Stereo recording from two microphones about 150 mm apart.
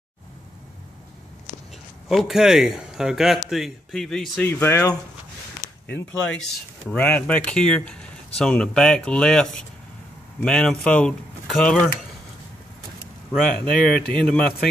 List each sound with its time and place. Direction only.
2.0 s speech: centre (ahead or behind)
4.5 s speech: 15° left (ahead or behind)
13.3 s speech: 5° left (ahead or behind)